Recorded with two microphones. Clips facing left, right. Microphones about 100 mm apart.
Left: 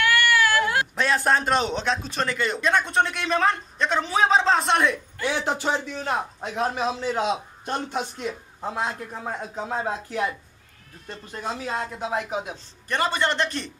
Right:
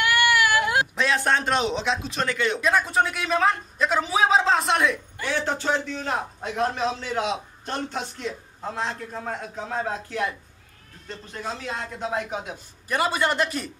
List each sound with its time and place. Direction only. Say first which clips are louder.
0.0 s a sound: even; 15° right (ahead or behind)
0.9 s a man's voice: left 1 dB; centre (ahead or behind)
5.2 s a man's voice: left 1 dB; 15° left (ahead or behind); by 13.7 s 5° right (ahead or behind)